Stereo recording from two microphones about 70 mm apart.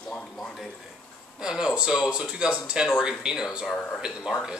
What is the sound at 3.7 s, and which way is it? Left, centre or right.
Speech, centre.